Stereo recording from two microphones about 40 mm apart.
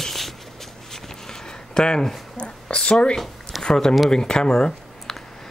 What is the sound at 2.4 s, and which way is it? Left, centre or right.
Speech, left.